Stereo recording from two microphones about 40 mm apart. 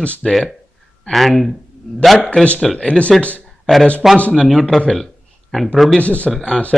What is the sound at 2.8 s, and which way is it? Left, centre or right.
Speech, left.